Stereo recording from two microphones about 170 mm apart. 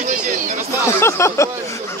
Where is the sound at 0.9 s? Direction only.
15° left (ahead or behind).